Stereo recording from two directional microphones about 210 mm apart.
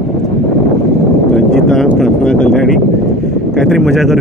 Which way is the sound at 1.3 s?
Centre (ahead or behind).